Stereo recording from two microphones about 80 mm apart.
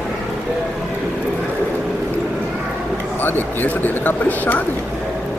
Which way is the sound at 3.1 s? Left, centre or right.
Left.